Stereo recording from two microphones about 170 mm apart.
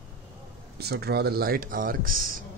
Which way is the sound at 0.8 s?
70° right (ahead or behind).